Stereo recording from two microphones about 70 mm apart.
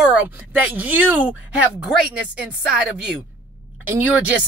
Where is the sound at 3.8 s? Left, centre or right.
Right.